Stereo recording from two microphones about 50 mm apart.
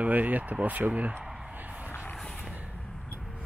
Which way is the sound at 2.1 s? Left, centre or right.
Centre.